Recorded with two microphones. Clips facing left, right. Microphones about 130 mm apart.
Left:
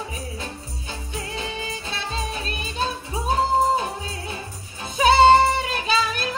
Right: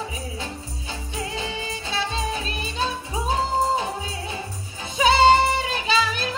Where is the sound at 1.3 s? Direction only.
30° right (ahead or behind).